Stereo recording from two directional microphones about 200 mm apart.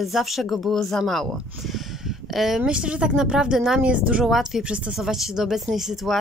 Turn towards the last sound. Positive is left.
turn(degrees=0)  # may be behind; listen again after turning